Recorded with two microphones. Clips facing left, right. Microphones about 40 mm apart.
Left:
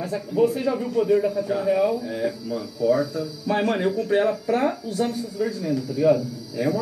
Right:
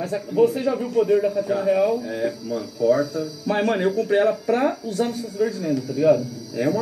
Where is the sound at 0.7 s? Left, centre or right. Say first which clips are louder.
Right 1 dB; centre.